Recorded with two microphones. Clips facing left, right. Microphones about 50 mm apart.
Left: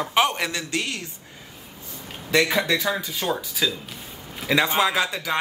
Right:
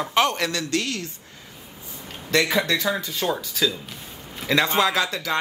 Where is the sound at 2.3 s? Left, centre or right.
Centre.